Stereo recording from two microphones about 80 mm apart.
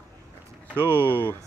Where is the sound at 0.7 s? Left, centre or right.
Right.